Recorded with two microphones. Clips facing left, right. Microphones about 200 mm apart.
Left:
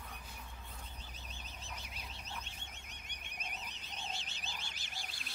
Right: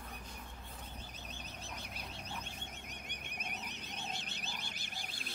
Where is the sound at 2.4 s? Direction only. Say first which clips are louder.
Right 4 dB; 55° right (ahead or behind).